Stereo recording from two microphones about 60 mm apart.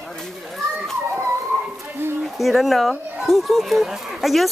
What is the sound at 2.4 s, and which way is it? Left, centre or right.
Speech, centre.